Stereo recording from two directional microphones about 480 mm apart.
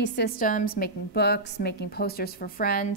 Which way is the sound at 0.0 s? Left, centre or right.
Centre.